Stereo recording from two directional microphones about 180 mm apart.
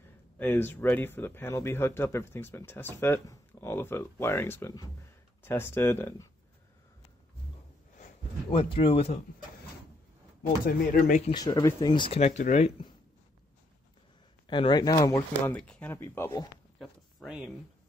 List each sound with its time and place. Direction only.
0.4 s speech: 10° left (ahead or behind)
8.5 s speech: 30° left (ahead or behind)
10.6 s speech: 50° left (ahead or behind)
11.3 s speech: 20° left (ahead or behind); by 12.7 s 40° left (ahead or behind)
14.5 s speech: 25° left (ahead or behind)
15.5 s speech: 5° left (ahead or behind)
16.7 s a sound: 5° left (ahead or behind)